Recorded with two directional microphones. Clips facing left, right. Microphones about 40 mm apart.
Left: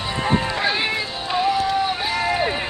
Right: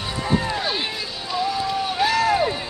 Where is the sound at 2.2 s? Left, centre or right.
Left.